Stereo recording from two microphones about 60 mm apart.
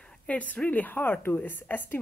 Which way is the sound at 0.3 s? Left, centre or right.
Left.